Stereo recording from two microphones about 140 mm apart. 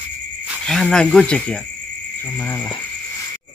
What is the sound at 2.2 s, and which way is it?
Cricket, 10° left (ahead or behind).